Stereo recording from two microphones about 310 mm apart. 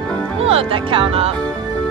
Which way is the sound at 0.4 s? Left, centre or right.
Centre.